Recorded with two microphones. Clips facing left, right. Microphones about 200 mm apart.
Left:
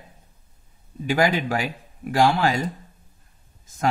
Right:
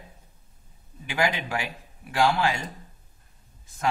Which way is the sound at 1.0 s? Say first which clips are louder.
Left 6 dB; 40° left (ahead or behind).